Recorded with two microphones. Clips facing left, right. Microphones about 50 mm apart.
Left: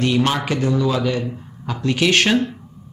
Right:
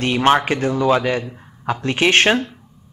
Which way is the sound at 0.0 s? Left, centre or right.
Right.